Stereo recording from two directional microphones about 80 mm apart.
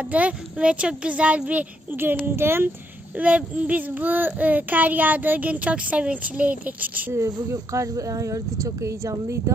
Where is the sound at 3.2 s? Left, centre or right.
Centre.